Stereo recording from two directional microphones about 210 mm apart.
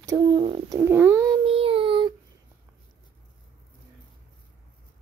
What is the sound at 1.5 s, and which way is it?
Child singing, 25° right (ahead or behind).